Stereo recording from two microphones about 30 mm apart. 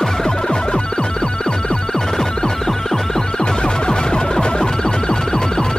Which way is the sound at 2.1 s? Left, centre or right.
Centre.